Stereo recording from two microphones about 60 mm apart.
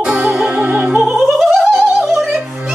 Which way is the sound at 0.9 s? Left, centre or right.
Centre.